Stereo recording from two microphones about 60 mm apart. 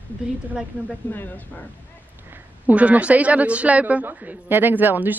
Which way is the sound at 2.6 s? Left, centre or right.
Right.